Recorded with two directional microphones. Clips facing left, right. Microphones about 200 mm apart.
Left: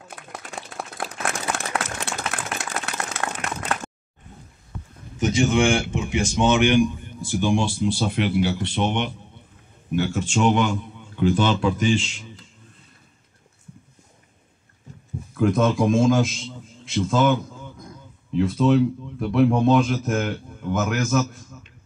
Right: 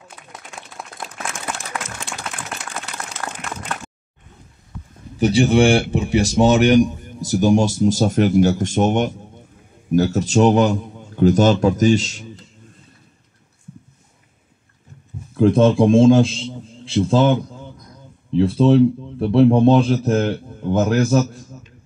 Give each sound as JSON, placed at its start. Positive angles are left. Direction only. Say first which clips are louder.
{"t": 1.5, "sound": "a sound", "louder": "left 2 dB", "side_deg": 65}
{"t": 5.1, "sound": "speech", "louder": "right 5 dB", "side_deg": -35}
{"t": 15.3, "sound": "a man's voice", "louder": "right 6 dB", "side_deg": -30}